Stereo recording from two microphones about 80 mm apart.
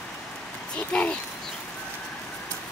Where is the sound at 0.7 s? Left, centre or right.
Centre.